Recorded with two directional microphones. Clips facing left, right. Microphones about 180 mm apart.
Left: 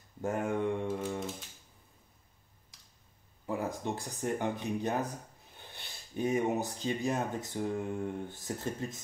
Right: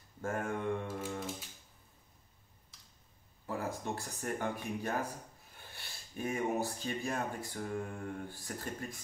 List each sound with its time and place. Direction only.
0.2 s speech: 15° left (ahead or behind)
3.4 s speech: 15° left (ahead or behind)